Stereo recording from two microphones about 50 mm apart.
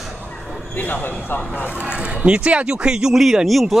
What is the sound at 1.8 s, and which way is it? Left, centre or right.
Speech, centre.